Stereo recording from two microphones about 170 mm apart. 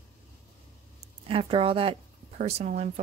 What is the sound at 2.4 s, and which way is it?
Speech, 40° right (ahead or behind).